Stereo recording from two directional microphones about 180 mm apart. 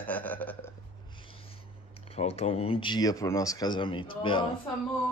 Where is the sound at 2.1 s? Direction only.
35° left (ahead or behind).